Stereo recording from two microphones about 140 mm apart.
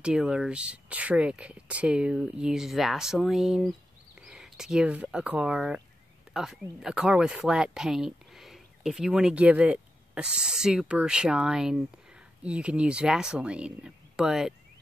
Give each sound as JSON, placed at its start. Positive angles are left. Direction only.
{"t": 0.0, "sound": "speech", "side_deg": -5}